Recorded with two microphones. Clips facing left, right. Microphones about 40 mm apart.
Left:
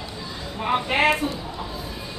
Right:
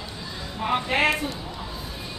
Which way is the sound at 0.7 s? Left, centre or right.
Centre.